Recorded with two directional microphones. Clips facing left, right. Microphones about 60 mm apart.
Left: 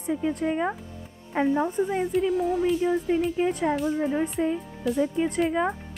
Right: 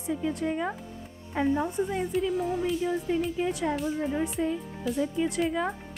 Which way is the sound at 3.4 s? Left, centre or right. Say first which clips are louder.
Left 4 dB; left.